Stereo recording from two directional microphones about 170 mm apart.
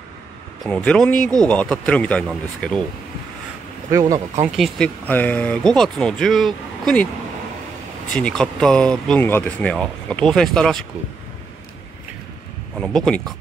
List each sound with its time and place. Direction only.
0.7 s speech: 5° left (ahead or behind)
3.9 s speech: 20° right (ahead or behind)
4.5 s speech: centre (ahead or behind)
8.1 s speech: 5° left (ahead or behind)
12.7 s speech: 5° left (ahead or behind)